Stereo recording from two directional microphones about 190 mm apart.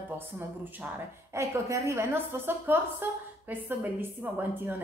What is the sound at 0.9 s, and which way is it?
A woman's voice, 15° right (ahead or behind).